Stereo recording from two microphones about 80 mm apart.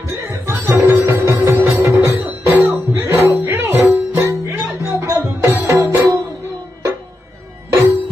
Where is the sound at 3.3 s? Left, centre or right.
Right.